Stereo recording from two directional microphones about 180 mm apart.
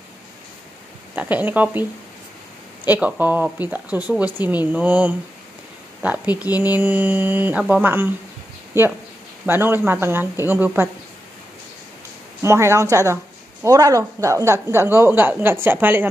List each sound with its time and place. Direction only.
1.1 s a woman's voice: 10° right (ahead or behind)
2.9 s a woman's voice: 10° right (ahead or behind)
12.4 s a woman's voice: 15° right (ahead or behind)